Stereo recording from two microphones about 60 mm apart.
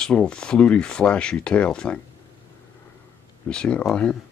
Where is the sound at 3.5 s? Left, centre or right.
Centre.